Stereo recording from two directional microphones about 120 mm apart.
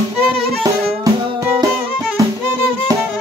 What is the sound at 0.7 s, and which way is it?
Music, 30° right (ahead or behind).